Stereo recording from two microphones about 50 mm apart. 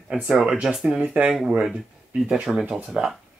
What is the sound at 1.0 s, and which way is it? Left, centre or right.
Speech, right.